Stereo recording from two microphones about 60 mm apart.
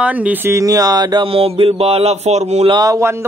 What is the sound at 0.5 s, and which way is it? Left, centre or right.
Speech, right.